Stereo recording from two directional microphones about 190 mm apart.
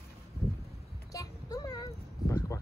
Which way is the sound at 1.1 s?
20° left (ahead or behind).